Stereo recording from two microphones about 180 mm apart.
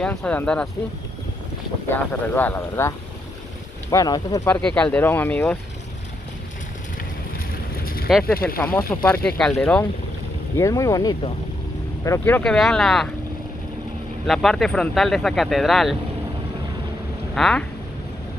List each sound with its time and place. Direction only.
0.0 s speech: 5° left (ahead or behind)
1.9 s speech: 10° left (ahead or behind)
3.9 s speech: 20° left (ahead or behind)
4.6 s speech: 5° left (ahead or behind)
7.8 s a sound: 55° left (ahead or behind)
8.1 s speech: 5° left (ahead or behind)
10.6 s speech: 20° left (ahead or behind); by 13.1 s 5° left (ahead or behind)
14.2 s speech: centre (ahead or behind)
17.4 s speech: 5° left (ahead or behind)